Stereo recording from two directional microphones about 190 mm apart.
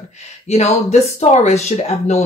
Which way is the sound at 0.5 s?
35° left (ahead or behind).